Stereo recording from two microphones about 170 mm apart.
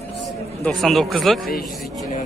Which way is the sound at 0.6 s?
Centre (ahead or behind).